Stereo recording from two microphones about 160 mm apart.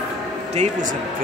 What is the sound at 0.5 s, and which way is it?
Speech, 50° right (ahead or behind).